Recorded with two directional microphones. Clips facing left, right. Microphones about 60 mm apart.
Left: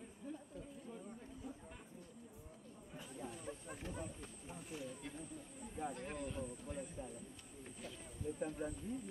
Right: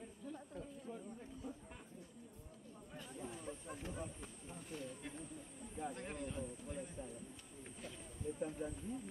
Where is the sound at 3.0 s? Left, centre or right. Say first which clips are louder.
Even; centre.